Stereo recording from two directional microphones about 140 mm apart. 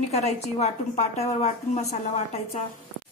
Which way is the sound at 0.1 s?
50° left (ahead or behind).